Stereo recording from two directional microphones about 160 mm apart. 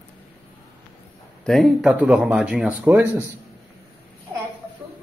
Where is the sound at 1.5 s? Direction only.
Centre (ahead or behind).